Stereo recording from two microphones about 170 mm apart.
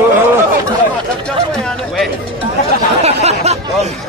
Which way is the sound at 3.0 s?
40° right (ahead or behind).